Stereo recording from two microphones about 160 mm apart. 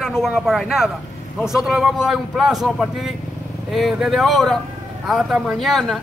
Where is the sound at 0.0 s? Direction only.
Centre (ahead or behind).